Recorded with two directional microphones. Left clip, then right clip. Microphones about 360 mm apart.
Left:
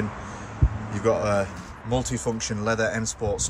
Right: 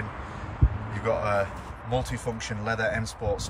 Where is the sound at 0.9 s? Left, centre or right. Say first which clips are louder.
Left 3 dB; centre.